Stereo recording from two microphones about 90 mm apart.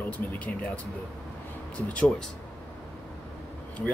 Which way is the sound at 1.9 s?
15° left (ahead or behind).